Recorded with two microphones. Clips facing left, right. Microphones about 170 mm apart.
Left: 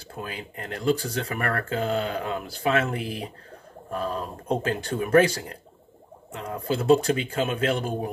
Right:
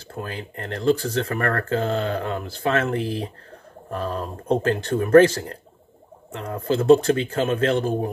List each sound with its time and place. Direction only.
0.2 s speech: 10° left (ahead or behind)
4.5 s speech: 10° left (ahead or behind)